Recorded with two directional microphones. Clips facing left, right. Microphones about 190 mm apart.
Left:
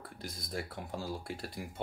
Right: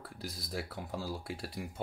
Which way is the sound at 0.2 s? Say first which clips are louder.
Even; 5° right (ahead or behind).